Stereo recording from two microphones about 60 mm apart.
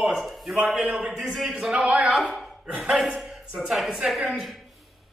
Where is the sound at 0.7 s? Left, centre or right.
Centre.